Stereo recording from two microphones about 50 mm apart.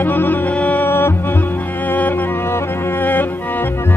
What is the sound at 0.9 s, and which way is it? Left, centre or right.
Music, left.